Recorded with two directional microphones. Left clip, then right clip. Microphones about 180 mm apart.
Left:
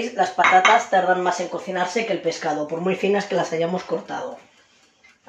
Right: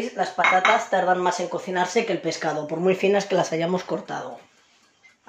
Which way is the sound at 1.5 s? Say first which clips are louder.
Right 1 dB; 50° right (ahead or behind).